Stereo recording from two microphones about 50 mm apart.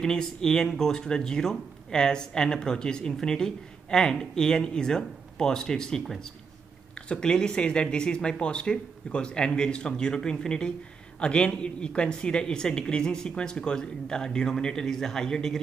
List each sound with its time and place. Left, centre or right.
0.0 s speech: centre